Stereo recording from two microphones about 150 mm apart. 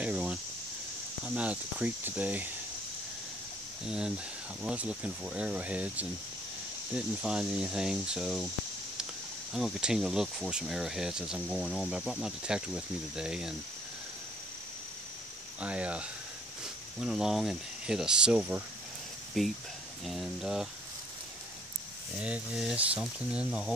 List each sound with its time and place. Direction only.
0.0 s cricket: 10° right (ahead or behind)
1.2 s speech: 10° right (ahead or behind)
3.8 s speech: 5° right (ahead or behind)
9.5 s speech: 5° right (ahead or behind)
15.6 s speech: 10° right (ahead or behind)
19.4 s speech: centre (ahead or behind)
22.1 s speech: 5° right (ahead or behind)